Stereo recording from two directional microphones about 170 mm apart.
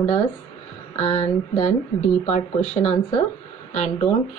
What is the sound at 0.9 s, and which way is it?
A woman's voice, 40° left (ahead or behind).